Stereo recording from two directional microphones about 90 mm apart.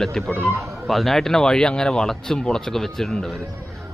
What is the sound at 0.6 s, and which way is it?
A man's voice, centre (ahead or behind).